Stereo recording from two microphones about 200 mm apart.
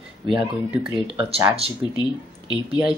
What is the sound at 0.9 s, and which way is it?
Speech, 5° right (ahead or behind).